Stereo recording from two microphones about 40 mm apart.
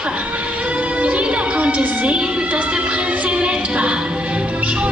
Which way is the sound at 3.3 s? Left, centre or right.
Right.